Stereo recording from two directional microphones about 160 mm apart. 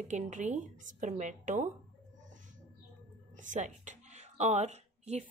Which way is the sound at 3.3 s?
50° right (ahead or behind).